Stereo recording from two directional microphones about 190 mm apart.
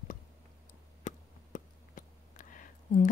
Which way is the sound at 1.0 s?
45° left (ahead or behind).